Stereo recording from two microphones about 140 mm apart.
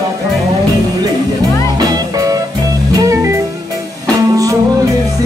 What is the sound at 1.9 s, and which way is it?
Music, 25° right (ahead or behind).